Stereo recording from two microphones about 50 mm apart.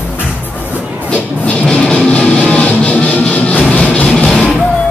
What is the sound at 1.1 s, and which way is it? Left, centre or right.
Music, centre.